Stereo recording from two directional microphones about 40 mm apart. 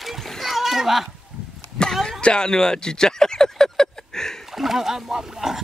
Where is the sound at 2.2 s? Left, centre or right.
Left.